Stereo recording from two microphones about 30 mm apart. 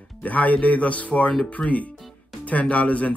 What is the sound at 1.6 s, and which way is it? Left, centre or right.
Speech, left.